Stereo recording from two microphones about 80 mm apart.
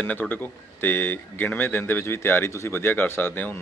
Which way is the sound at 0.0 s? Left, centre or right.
Left.